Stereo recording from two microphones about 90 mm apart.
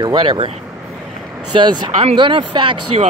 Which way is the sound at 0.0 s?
55° right (ahead or behind).